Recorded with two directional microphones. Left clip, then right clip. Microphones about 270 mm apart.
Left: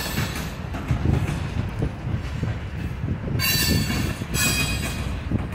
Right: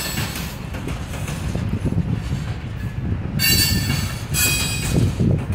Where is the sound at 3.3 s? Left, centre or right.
Right.